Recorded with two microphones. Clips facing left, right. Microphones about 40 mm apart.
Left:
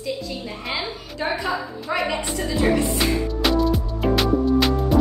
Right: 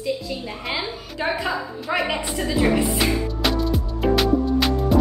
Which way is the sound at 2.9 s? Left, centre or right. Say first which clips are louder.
Even; centre.